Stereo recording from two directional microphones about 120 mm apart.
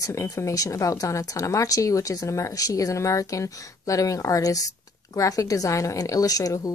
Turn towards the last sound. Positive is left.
turn(degrees=30)  # may be behind; listen again after turning